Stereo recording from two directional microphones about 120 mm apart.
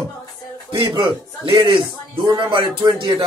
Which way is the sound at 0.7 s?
40° right (ahead or behind).